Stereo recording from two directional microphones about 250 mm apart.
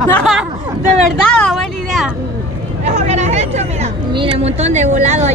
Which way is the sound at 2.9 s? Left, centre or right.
Right.